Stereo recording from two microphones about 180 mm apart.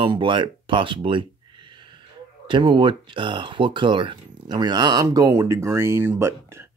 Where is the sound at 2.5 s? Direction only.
30° right (ahead or behind).